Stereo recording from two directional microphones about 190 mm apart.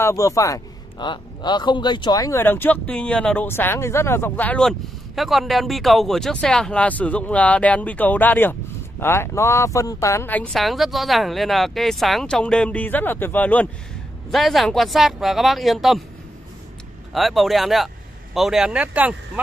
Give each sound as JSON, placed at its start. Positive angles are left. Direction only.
{"t": 0.0, "sound": "speech", "side_deg": 15}
{"t": 17.1, "sound": "speech", "side_deg": 0}